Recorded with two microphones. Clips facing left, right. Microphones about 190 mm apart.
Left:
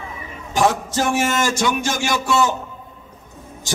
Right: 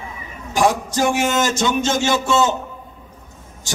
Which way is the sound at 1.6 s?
25° right (ahead or behind).